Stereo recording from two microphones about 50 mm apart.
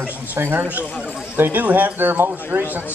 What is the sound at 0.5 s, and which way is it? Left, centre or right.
Speech, right.